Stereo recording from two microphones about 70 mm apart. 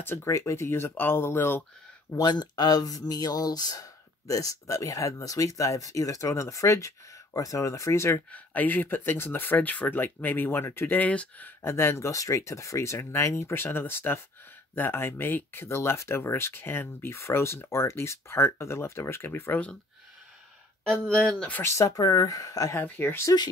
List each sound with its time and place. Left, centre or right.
0.0 s speech: left
2.1 s speech: left
8.3 s speech: left
11.0 s speech: left
11.6 s speech: left
12.1 s speech: left
20.9 s speech: centre
21.6 s speech: left
22.8 s speech: left